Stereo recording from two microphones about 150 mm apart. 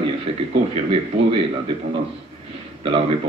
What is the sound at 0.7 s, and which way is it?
Speech, 40° right (ahead or behind).